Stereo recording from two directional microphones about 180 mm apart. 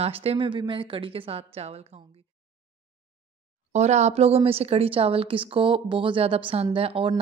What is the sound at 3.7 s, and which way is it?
A woman's voice, 40° right (ahead or behind).